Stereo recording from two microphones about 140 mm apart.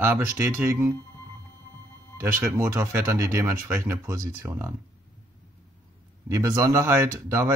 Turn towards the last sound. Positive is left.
turn(degrees=-20)  # may be behind; listen again after turning